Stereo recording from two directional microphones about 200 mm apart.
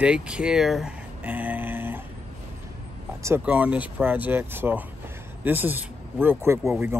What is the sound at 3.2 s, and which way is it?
Speech, 10° right (ahead or behind).